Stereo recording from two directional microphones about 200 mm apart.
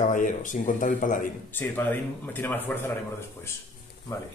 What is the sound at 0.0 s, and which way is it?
Speech, 40° left (ahead or behind).